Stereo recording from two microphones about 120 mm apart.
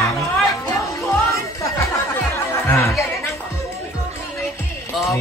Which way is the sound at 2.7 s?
25° left (ahead or behind).